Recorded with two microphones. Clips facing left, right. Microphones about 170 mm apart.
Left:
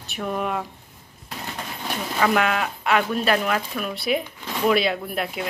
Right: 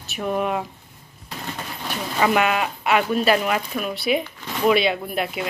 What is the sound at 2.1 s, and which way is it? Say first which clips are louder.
Speech: right 2 dB; 10° right (ahead or behind).